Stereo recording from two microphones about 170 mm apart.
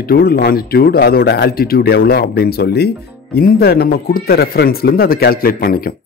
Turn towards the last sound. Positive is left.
turn(degrees=60)  # may be behind; listen again after turning